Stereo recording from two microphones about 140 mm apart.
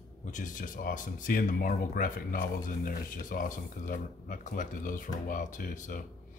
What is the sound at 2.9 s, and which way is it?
A man's voice, 80° left.